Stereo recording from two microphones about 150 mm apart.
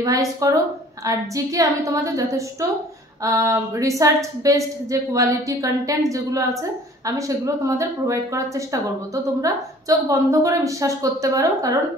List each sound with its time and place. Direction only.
0.0 s a woman's voice: 20° right (ahead or behind)